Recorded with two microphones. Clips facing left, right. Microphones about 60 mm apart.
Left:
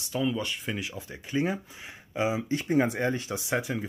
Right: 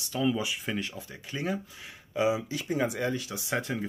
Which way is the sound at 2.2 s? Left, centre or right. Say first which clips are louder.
Even; left.